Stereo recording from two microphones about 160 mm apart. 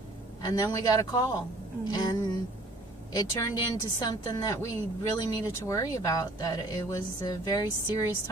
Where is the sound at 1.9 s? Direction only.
25° left (ahead or behind).